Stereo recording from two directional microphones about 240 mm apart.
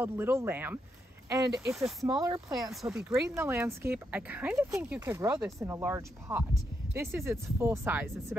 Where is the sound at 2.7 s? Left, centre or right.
Centre.